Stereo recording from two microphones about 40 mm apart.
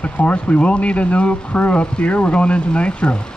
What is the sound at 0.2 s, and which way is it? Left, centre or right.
Speech, left.